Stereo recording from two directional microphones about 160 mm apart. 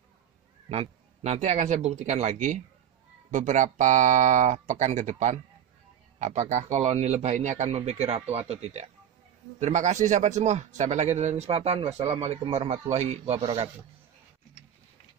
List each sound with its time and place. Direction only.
0.7 s speech: 45° right (ahead or behind)